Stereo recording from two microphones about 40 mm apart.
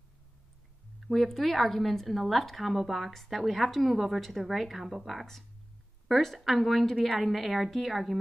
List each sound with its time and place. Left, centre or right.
1.0 s a woman's voice: centre